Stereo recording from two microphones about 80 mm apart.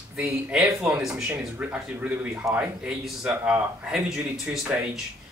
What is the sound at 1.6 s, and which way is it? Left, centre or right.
Speech, right.